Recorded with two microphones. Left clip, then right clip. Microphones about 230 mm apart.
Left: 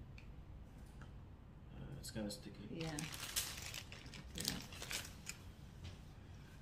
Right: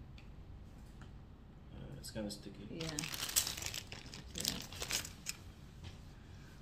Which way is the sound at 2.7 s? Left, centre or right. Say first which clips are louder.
Right 5 dB; right.